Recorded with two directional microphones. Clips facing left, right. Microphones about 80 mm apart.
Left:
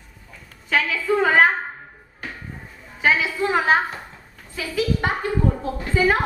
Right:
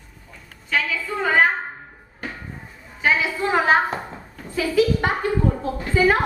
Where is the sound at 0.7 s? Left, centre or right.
Centre.